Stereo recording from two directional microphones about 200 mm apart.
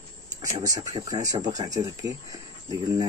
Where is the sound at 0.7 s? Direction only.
20° right (ahead or behind).